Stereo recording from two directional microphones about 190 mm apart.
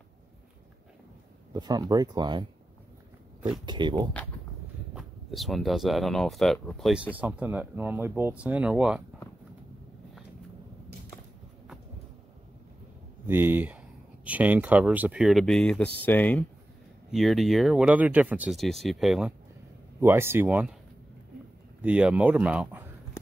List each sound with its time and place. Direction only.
1.5 s speech: 20° right (ahead or behind)
3.6 s speech: 25° right (ahead or behind)
4.9 s speech: centre (ahead or behind)
13.3 s speech: 10° right (ahead or behind)
20.0 s speech: 10° right (ahead or behind)
21.8 s speech: 5° right (ahead or behind)